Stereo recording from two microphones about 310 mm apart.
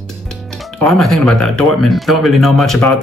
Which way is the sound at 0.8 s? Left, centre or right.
Centre.